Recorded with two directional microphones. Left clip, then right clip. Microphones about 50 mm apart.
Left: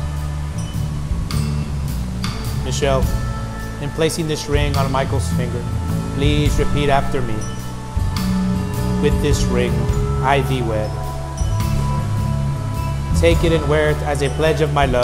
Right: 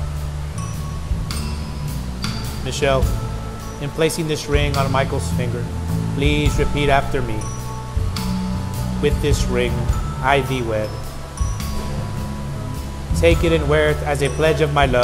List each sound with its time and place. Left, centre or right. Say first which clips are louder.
2.7 s speech: even; centre
4.0 s speech: even; left
4.6 s speech: even; centre
4.9 s speech: even; left
9.0 s speech: even; left
13.1 s speech: even; left